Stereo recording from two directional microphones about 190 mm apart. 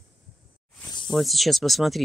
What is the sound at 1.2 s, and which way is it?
Speech, centre (ahead or behind).